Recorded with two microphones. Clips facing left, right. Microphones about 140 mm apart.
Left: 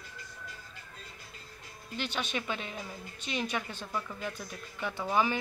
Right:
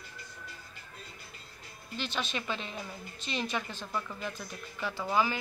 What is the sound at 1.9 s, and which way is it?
Speech, 15° left (ahead or behind).